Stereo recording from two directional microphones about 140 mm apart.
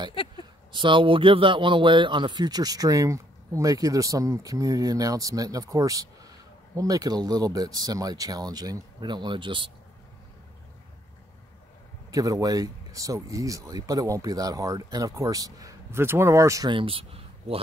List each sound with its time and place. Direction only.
0.2 s speech: 40° left (ahead or behind)
0.7 s a man's voice: 35° right (ahead or behind)
12.1 s a man's voice: 25° right (ahead or behind)
16.7 s speech: 40° right (ahead or behind)